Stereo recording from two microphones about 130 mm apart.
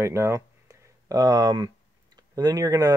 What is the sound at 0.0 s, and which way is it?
Speech, 20° right (ahead or behind).